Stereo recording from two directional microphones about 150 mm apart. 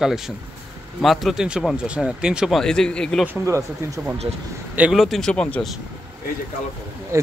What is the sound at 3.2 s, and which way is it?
Speech, 15° right (ahead or behind).